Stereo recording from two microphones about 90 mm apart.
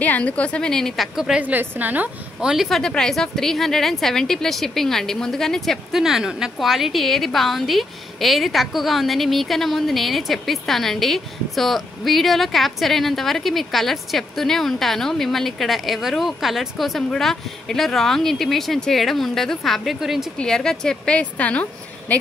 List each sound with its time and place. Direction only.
0.0 s a woman's voice: 15° left (ahead or behind)
1.1 s speech: 5° right (ahead or behind)
1.4 s a woman's voice: 20° right (ahead or behind)
2.5 s speech: centre (ahead or behind)
20.3 s a woman's voice: 10° left (ahead or behind)